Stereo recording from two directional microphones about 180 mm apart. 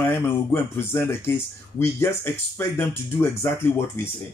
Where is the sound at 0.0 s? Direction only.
10° left (ahead or behind).